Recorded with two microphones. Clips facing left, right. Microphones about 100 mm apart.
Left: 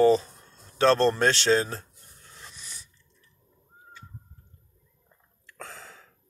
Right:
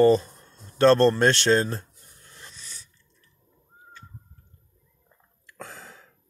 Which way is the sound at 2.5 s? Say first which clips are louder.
Even; 15° left (ahead or behind).